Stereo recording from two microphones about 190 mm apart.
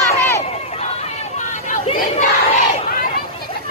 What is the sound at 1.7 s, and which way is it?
Chatter, 40° left (ahead or behind).